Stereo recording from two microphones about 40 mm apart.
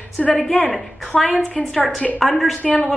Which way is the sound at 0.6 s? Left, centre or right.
Left.